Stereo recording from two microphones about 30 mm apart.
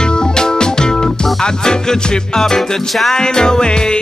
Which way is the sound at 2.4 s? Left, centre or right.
Centre.